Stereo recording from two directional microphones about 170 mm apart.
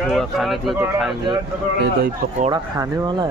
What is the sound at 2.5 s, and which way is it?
Speech, 20° right (ahead or behind).